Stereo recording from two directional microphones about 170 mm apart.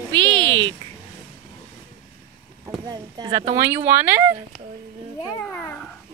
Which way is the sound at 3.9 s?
10° right (ahead or behind).